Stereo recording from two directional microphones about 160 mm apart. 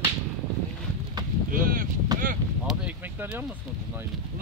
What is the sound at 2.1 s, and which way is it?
Wind, 25° right (ahead or behind).